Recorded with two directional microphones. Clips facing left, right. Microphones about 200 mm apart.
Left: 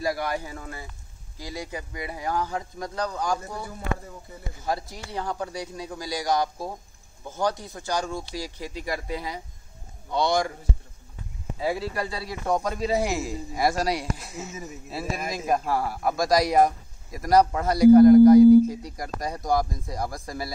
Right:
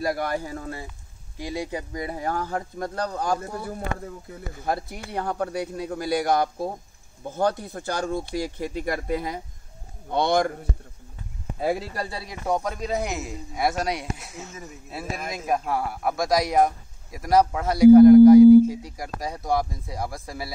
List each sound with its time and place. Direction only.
0.0 s speech: 55° right (ahead or behind); by 0.8 s 35° right (ahead or behind)
1.4 s speech: 25° right (ahead or behind); by 10.5 s 55° right (ahead or behind)
11.6 s speech: 50° right (ahead or behind)
12.6 s a man's voice: centre (ahead or behind)